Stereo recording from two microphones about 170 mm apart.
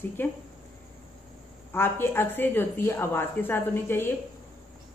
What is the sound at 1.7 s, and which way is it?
A woman's voice, 15° left (ahead or behind).